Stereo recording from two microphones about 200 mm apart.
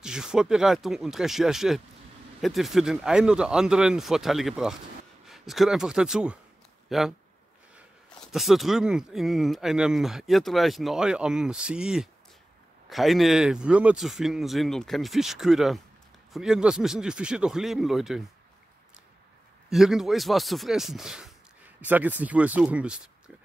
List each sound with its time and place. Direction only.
0.0 s speech: 5° right (ahead or behind)
8.3 s speech: centre (ahead or behind)
19.7 s speech: centre (ahead or behind)